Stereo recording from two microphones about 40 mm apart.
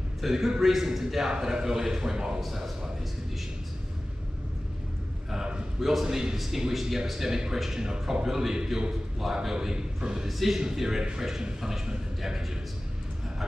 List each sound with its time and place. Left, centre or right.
0.2 s a man's voice: centre
2.4 s a man's voice: centre
5.3 s a sound: centre
6.0 s a man's voice: centre
6.3 s a man's voice: centre